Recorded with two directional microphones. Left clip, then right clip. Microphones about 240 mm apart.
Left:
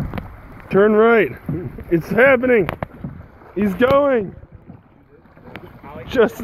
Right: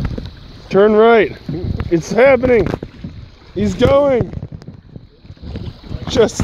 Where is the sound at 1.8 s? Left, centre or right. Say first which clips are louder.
Right 3 dB; right.